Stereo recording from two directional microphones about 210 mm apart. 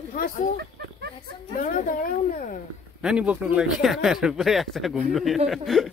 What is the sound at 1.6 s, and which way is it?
Speech, 40° left (ahead or behind).